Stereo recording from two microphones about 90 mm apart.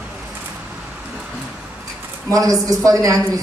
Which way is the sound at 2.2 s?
40° right (ahead or behind).